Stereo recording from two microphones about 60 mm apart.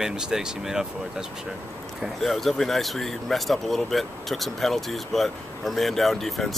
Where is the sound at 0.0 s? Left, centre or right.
Centre.